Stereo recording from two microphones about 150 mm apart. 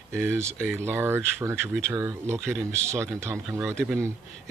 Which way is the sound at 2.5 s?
5° left (ahead or behind).